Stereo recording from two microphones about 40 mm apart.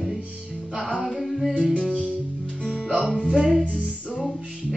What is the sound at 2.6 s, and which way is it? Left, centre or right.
Music, right.